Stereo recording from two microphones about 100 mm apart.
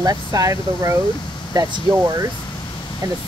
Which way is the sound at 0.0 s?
35° right (ahead or behind).